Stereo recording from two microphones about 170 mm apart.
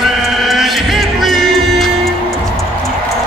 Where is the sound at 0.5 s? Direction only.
Centre (ahead or behind).